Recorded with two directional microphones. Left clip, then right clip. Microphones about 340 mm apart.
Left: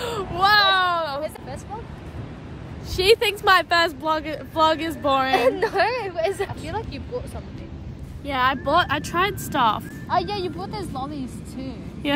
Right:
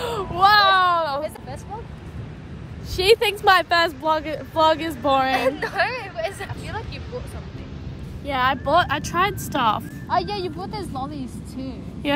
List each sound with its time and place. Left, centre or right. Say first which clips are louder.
0.0 s a sound: right 3 dB; centre
3.0 s speech: right 1 dB; centre
5.3 s speech: left 2 dB; left
8.3 s speech: right 1 dB; centre